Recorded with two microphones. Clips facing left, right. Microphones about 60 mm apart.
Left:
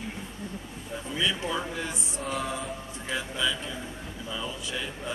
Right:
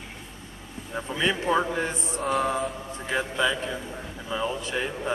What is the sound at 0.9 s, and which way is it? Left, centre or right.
Speech, right.